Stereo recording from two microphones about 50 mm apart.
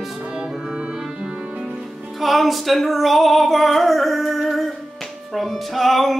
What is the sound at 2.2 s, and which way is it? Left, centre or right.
Music, centre.